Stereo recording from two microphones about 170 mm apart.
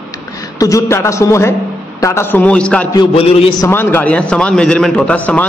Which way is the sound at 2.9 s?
25° left (ahead or behind).